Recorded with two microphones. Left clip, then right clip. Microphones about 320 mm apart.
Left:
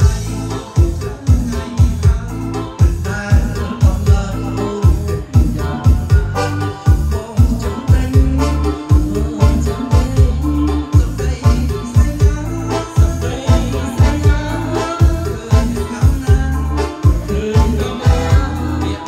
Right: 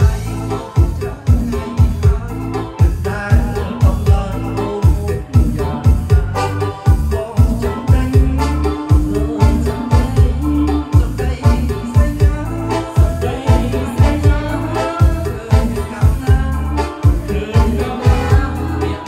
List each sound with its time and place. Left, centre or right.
9.4 s music: right
13.5 s music: right
16.7 s music: right